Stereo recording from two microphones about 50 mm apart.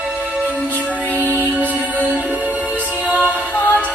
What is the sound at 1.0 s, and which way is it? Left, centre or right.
Music, right.